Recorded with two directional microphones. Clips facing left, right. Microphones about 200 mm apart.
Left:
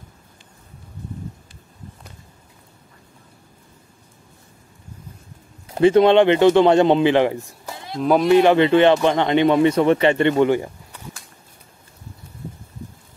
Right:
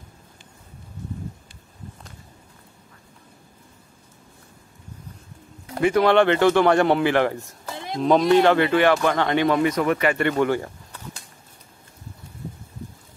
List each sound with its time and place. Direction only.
5.8 s speech: 30° left (ahead or behind)